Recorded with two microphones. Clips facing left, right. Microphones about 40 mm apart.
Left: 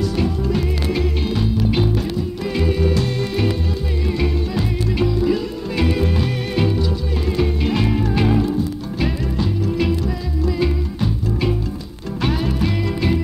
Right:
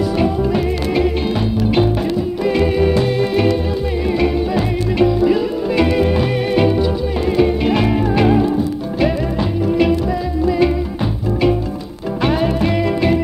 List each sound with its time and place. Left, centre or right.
0.2 s music: centre
2.4 s music: centre
12.2 s music: centre